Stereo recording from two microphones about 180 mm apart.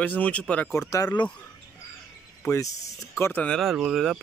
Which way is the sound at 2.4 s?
15° left (ahead or behind).